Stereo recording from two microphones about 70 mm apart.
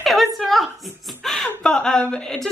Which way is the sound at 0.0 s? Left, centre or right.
Centre.